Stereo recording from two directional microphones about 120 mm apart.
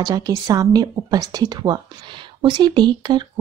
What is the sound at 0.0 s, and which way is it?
Speech, 30° right (ahead or behind).